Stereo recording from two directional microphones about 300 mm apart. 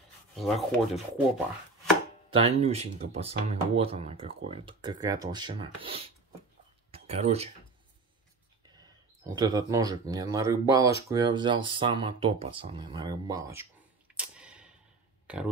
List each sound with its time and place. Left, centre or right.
0.4 s rub: centre
2.3 s speech: right
6.9 s a sound: right
8.6 s speech: centre